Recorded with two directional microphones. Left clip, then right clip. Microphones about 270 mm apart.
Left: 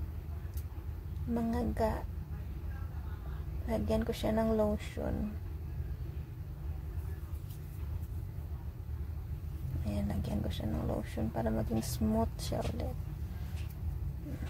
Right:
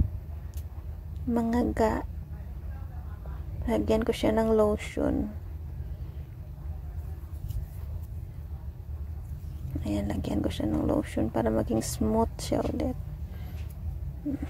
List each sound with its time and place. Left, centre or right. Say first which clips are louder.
1.3 s speech: right 8 dB; right
3.6 s speech: right 8 dB; right
9.8 s speech: right 8 dB; right